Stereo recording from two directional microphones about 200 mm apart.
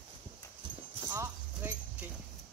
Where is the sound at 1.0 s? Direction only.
15° right (ahead or behind).